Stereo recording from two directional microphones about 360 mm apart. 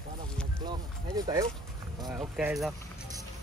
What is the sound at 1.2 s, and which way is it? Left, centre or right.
A woman's voice, centre.